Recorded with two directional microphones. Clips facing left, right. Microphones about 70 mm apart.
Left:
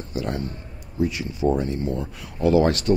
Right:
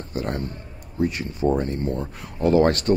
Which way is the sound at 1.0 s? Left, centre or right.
Right.